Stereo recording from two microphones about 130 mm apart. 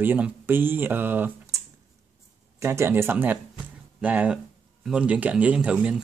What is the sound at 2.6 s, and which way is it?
Speech, 20° right (ahead or behind).